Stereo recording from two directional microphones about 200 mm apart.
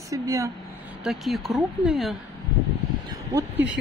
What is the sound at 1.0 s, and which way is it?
Speech, centre (ahead or behind).